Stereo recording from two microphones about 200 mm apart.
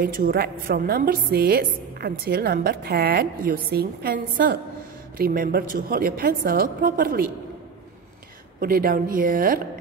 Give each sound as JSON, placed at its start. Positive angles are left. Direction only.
{"t": 0.0, "sound": "a woman's voice", "side_deg": -45}
{"t": 8.5, "sound": "a woman's voice", "side_deg": -45}